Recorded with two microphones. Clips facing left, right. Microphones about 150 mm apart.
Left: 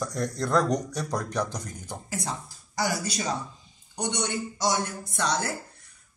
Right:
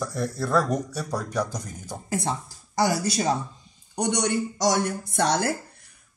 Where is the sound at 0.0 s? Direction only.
5° right (ahead or behind).